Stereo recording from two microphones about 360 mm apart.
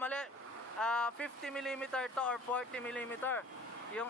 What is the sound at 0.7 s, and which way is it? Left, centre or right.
A man's voice, centre.